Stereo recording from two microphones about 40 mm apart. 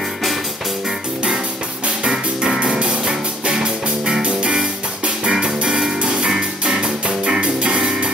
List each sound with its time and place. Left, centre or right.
2.6 s music: right
5.2 s music: centre